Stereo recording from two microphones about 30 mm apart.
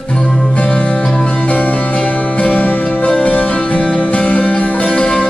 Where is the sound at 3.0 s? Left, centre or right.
Left.